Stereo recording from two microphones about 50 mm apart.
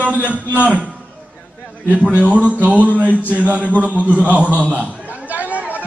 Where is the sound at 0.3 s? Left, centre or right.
Right.